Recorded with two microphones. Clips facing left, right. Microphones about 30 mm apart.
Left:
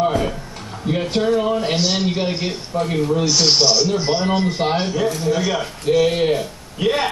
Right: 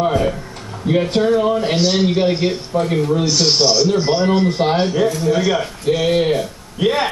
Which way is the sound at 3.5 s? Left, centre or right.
Centre.